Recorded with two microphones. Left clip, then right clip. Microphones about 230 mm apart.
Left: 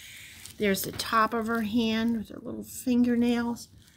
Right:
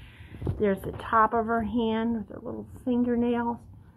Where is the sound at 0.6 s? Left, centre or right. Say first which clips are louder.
Right 1 dB; left.